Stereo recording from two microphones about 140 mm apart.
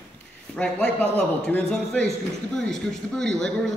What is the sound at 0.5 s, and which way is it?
A man's voice, 5° left (ahead or behind).